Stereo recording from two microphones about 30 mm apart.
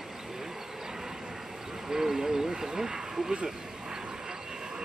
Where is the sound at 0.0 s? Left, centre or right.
Centre.